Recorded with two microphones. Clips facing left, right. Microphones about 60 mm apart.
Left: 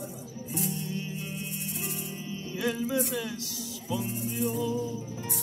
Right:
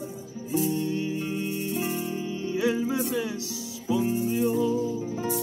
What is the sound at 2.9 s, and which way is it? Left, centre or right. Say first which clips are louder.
Music: right 3 dB; right.